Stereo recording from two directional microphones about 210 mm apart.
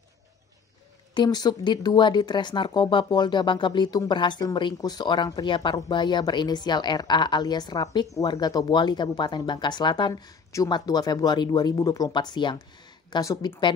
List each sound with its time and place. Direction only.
1.1 s speech: 20° left (ahead or behind)